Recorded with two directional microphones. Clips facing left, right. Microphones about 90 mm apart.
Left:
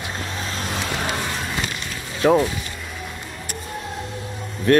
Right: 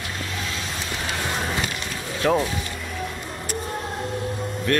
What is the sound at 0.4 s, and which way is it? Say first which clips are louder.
Vehicle: left 2 dB; 35° left (ahead or behind).